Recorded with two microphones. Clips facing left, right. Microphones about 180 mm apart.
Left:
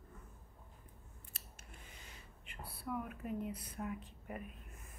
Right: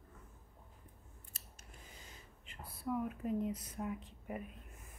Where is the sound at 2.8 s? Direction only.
25° right (ahead or behind).